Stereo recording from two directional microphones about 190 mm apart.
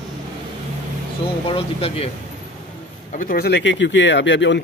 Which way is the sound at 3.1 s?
45° left (ahead or behind).